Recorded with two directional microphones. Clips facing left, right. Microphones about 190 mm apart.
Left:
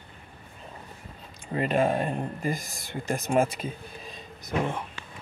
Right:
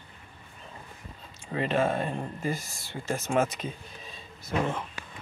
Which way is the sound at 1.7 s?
15° left (ahead or behind).